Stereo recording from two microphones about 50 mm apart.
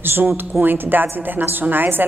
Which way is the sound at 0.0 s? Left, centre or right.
Right.